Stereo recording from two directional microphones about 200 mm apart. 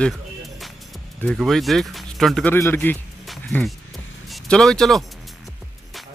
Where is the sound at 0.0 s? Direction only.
Centre (ahead or behind).